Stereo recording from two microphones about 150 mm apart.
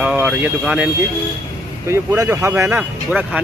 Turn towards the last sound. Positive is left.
turn(degrees=-5)  # may be behind; listen again after turning